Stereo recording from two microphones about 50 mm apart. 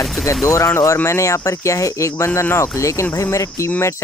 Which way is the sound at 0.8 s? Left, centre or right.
Left.